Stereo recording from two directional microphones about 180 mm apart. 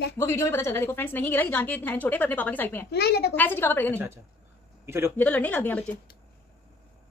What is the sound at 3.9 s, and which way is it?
A woman's voice, 15° right (ahead or behind).